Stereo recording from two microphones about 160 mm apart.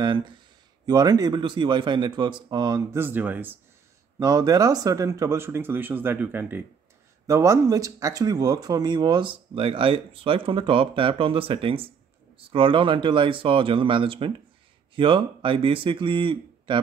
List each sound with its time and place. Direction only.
0.0 s a sound: 25° right (ahead or behind)
0.8 s a man's voice: 25° right (ahead or behind)
4.2 s speech: 25° right (ahead or behind)